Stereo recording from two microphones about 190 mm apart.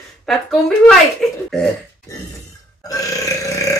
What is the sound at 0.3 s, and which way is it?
Speech, centre (ahead or behind).